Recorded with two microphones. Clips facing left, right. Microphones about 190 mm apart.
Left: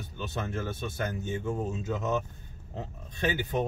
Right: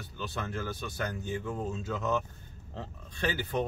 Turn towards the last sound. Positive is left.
turn(degrees=20)  # may be behind; listen again after turning